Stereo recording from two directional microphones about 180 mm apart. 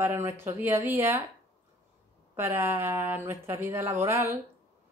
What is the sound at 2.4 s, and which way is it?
Speech, 10° right (ahead or behind).